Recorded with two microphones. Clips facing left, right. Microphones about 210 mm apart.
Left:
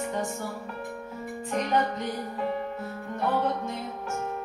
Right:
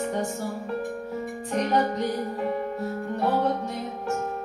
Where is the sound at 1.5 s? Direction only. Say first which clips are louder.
Right 2 dB; 40° right (ahead or behind).